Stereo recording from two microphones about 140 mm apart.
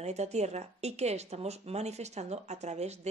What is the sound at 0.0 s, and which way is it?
Speech, 50° right (ahead or behind).